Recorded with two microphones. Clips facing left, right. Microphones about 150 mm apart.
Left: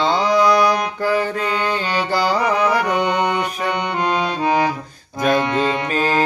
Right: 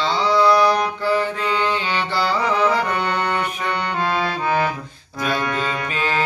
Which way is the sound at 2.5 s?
15° left (ahead or behind).